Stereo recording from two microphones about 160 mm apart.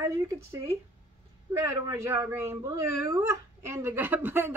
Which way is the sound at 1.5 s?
20° right (ahead or behind).